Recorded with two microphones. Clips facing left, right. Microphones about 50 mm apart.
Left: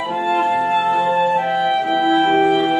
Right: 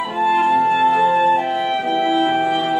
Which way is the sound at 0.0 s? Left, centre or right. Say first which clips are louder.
Right 1 dB; centre.